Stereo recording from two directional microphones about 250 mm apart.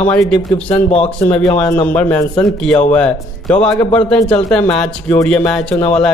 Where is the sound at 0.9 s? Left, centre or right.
Left.